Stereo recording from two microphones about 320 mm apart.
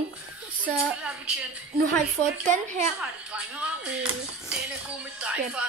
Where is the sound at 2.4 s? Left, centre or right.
Right.